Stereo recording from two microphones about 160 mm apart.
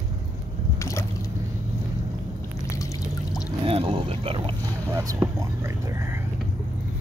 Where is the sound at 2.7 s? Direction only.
20° left (ahead or behind).